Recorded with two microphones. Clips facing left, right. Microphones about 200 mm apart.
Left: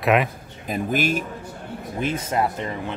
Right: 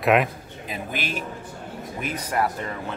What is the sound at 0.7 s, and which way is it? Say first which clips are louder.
Speech: left 8 dB; 45° left (ahead or behind).